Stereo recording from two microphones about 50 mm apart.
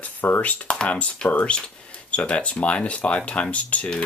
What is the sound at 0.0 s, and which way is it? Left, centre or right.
Speech, left.